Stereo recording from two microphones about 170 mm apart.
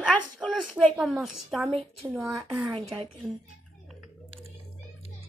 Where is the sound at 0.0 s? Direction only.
5° left (ahead or behind).